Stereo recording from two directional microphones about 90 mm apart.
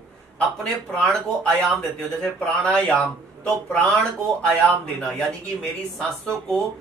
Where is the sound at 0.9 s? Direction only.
10° left (ahead or behind).